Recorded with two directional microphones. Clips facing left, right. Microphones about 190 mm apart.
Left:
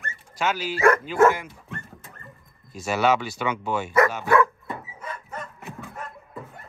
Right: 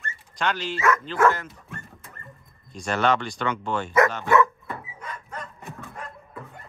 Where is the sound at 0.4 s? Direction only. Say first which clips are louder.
Left 4 dB; 5° left (ahead or behind).